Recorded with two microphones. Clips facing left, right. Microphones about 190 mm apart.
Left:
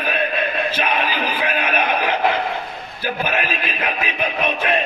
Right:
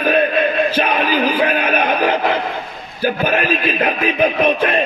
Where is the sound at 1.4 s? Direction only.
50° right (ahead or behind).